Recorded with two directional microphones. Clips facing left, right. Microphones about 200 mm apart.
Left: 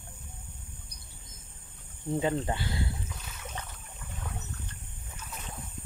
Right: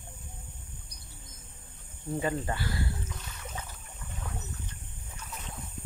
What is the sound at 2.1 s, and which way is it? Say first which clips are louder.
Speech: left 2 dB; 20° left (ahead or behind).